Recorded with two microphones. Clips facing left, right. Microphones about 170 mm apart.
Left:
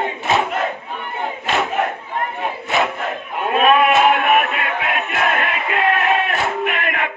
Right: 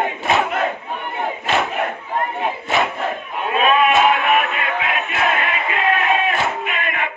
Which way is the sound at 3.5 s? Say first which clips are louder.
Left 2 dB; 55° left (ahead or behind).